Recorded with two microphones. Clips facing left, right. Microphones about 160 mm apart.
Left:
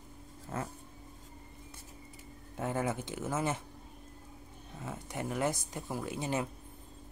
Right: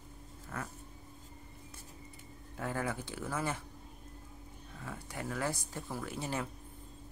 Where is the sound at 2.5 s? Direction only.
20° left (ahead or behind).